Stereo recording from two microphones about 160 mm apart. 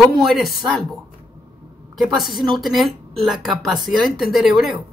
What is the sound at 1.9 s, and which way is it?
Speech, centre (ahead or behind).